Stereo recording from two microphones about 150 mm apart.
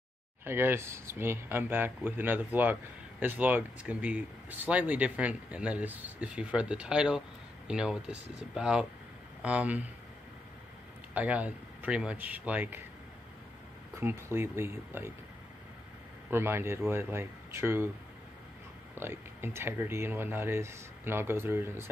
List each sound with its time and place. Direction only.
0.5 s speech: 15° right (ahead or behind)
11.1 s speech: 10° right (ahead or behind)
13.9 s speech: 15° right (ahead or behind)
16.3 s speech: 15° right (ahead or behind)
18.9 s speech: 15° right (ahead or behind)